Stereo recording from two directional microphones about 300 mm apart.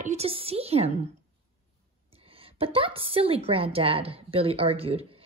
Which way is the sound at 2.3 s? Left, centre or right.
Centre.